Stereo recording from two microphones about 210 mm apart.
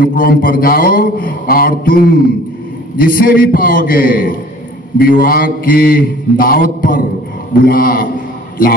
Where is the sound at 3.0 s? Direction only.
45° left (ahead or behind).